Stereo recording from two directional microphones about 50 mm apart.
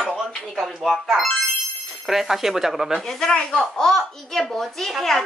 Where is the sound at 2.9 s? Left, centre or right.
Centre.